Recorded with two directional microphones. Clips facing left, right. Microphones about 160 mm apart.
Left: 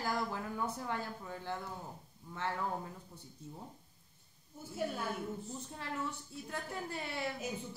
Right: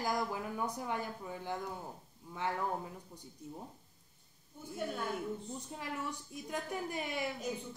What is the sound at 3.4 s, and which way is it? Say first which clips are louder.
Speech: right 3 dB; 15° right (ahead or behind).